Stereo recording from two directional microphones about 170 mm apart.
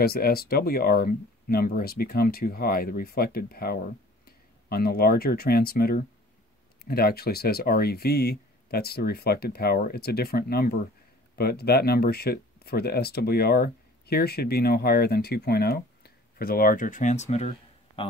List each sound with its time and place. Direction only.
0.0 s speech: 65° left (ahead or behind); by 18.0 s 35° left (ahead or behind)